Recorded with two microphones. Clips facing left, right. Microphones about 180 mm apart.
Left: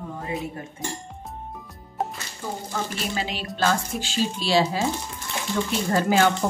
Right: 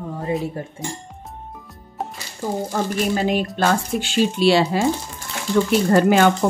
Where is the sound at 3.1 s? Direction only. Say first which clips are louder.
Right 10 dB; 50° right (ahead or behind).